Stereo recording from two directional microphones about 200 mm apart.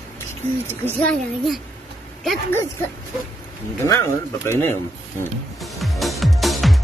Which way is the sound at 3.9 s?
15° left (ahead or behind).